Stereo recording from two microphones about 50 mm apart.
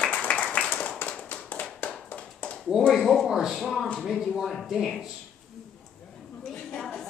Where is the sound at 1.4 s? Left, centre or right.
Left.